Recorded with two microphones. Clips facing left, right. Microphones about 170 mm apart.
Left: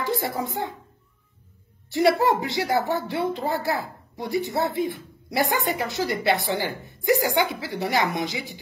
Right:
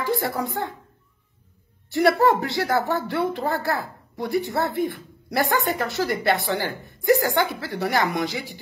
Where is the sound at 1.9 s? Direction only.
20° left (ahead or behind).